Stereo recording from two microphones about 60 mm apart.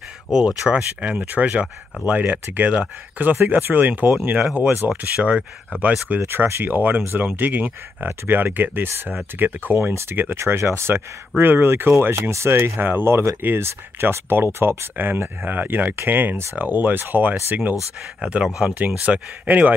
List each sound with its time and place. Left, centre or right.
0.3 s speech: centre
0.7 s speech: right
4.8 s speech: centre
6.2 s speech: right
12.7 s speech: right
13.0 s speech: right
18.2 s speech: centre